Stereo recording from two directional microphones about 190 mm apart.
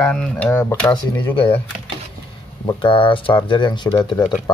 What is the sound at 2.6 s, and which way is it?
Speech, 25° left (ahead or behind).